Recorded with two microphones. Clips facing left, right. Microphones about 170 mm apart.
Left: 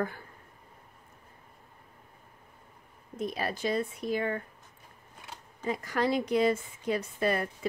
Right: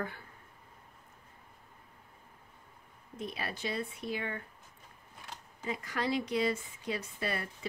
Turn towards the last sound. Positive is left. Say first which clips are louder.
# left 8 dB
turn(degrees=50)  # may be behind; listen again after turning